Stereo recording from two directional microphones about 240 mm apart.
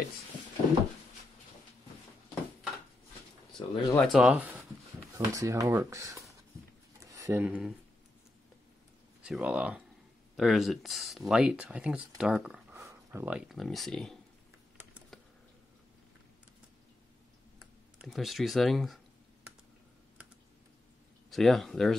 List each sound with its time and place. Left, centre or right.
3.5 s speech: centre
4.0 s speech: centre
7.0 s a sound: centre
9.2 s speech: centre
14.8 s a sound: centre
17.9 s speech: centre
21.3 s speech: centre